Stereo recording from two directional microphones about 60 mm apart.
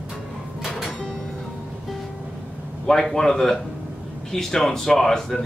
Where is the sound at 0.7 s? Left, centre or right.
Centre.